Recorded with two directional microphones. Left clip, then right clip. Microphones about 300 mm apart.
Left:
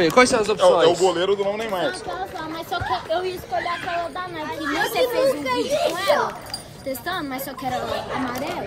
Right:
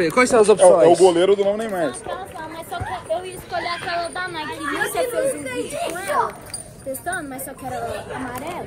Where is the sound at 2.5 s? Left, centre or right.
Left.